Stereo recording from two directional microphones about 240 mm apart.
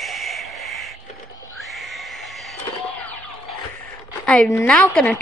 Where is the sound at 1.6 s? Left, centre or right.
Centre.